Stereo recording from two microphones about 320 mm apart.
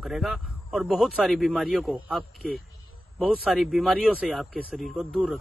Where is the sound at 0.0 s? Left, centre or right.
Centre.